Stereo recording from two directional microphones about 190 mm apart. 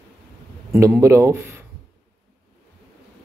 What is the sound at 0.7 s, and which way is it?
Speech, 15° right (ahead or behind).